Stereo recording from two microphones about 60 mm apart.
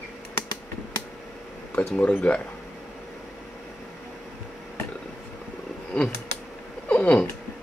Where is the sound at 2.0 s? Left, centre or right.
Left.